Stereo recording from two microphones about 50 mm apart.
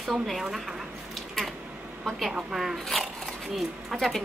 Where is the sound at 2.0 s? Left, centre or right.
Centre.